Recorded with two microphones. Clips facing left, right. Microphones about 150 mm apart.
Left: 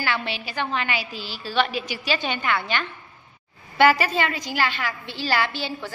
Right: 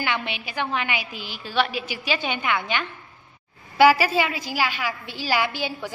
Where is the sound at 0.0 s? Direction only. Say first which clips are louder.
Even; 15° right (ahead or behind).